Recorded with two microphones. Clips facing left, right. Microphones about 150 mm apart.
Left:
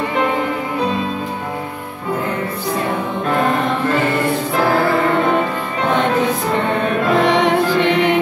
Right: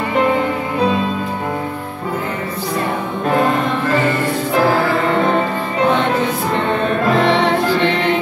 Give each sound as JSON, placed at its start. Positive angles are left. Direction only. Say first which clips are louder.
{"t": 7.2, "sound": "music", "louder": "even", "side_deg": 15}